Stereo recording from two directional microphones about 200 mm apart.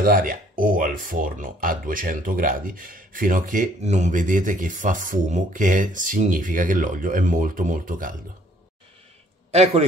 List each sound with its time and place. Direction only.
0.0 s speech: 45° right (ahead or behind)
9.5 s speech: 30° right (ahead or behind)